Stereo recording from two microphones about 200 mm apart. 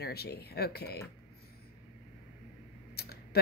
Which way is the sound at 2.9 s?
50° left (ahead or behind).